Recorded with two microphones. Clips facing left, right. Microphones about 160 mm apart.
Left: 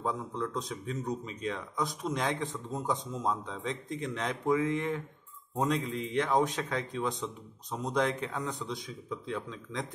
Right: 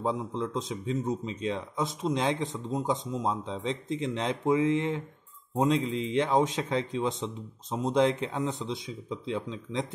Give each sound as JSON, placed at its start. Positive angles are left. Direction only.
{"t": 0.3, "sound": "speech", "side_deg": -25}